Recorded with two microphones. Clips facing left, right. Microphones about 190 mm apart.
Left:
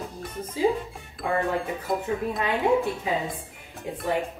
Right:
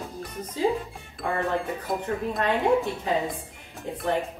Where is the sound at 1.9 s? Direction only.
Centre (ahead or behind).